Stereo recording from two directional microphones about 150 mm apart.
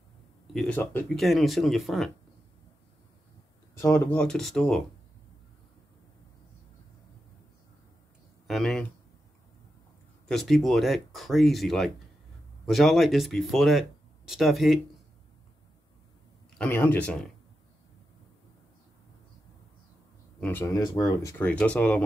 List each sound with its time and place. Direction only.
0.5 s speech: 5° left (ahead or behind)
3.8 s speech: 20° left (ahead or behind)
4.1 s speech: 5° left (ahead or behind)
8.5 s speech: centre (ahead or behind)
10.2 s speech: centre (ahead or behind)
16.5 s speech: 15° left (ahead or behind)
20.3 s speech: 10° left (ahead or behind)
20.7 s speech: 25° left (ahead or behind)